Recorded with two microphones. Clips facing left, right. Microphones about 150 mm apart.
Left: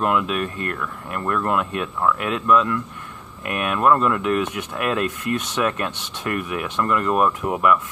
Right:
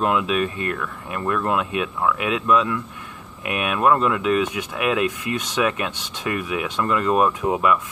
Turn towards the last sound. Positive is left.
turn(degrees=-20)  # may be behind; listen again after turning